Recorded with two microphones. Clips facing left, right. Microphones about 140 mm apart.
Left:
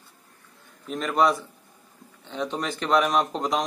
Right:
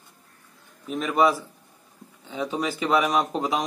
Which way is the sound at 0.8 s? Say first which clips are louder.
Right 1 dB; 5° right (ahead or behind).